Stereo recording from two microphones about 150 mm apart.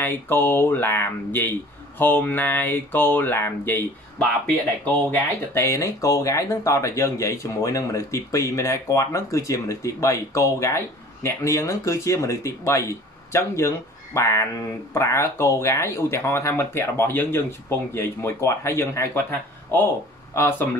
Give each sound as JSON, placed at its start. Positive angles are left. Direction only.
{"t": 0.0, "sound": "speech", "side_deg": 15}
{"t": 5.5, "sound": "speech", "side_deg": 20}